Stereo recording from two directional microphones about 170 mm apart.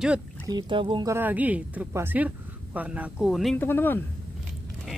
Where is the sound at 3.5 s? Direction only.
10° left (ahead or behind).